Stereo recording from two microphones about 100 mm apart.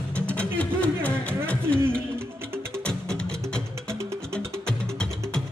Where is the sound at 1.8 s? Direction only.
25° right (ahead or behind).